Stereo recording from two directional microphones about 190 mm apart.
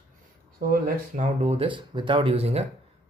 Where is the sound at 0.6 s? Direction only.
50° right (ahead or behind).